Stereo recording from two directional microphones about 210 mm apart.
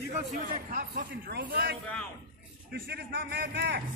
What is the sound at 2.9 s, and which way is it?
Speech, 50° right (ahead or behind).